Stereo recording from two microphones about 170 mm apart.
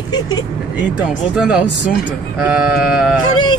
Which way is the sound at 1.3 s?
5° right (ahead or behind).